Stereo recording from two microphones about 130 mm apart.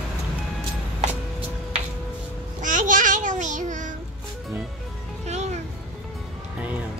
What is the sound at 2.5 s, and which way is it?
Child singing, 85° right.